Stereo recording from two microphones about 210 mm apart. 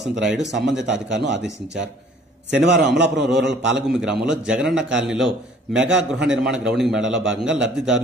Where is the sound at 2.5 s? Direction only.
55° right (ahead or behind).